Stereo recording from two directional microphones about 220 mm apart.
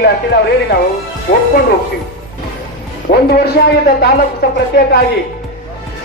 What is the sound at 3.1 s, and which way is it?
Music, 30° left (ahead or behind).